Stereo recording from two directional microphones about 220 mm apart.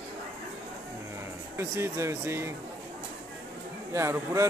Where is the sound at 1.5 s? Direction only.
10° right (ahead or behind).